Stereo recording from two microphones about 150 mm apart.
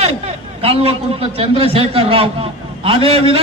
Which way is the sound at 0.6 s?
40° right (ahead or behind).